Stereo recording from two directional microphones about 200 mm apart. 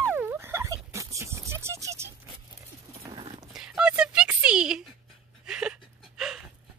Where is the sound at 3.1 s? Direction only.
25° right (ahead or behind).